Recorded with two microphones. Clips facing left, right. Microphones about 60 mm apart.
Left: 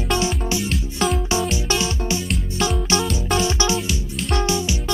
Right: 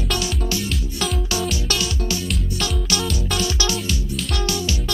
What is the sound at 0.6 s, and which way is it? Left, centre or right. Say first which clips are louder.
Music: left 3 dB; centre.